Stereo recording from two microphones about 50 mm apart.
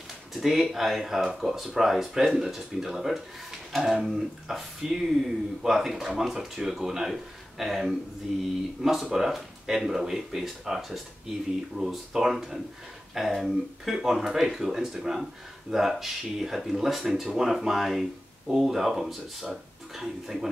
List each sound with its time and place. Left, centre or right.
0.3 s speech: centre
8.8 s speech: centre